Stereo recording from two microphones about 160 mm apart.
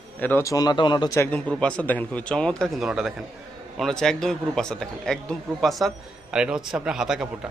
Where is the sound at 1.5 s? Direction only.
5° left (ahead or behind).